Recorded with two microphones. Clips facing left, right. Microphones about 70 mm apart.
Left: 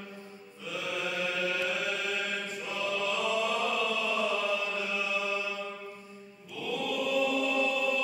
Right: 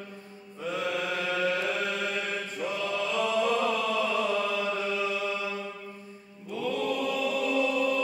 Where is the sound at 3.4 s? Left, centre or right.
Right.